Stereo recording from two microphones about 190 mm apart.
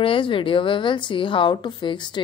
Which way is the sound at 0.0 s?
25° left (ahead or behind).